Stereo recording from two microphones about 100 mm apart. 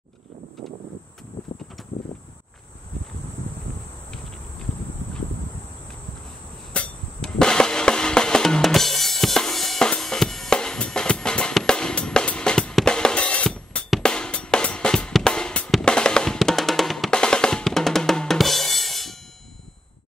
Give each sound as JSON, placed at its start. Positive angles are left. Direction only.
{"t": 1.4, "sound": "clip-clop", "side_deg": 45}
{"t": 1.8, "sound": "clip-clop", "side_deg": 0}
{"t": 6.7, "sound": "drum", "side_deg": 10}
{"t": 13.8, "sound": "music", "side_deg": 5}
{"t": 15.7, "sound": "drum", "side_deg": 5}